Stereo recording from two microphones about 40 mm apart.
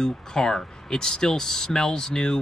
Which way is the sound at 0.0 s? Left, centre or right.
Centre.